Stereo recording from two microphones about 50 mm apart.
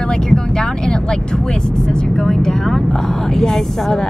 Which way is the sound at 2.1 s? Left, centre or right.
Centre.